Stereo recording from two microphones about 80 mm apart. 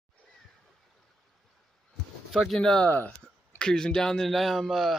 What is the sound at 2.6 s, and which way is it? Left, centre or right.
Speech, centre.